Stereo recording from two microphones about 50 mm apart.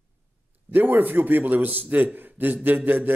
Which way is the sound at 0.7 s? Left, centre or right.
Right.